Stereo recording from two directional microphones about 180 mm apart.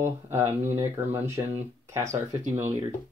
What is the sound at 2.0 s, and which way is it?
Speech, 40° right (ahead or behind).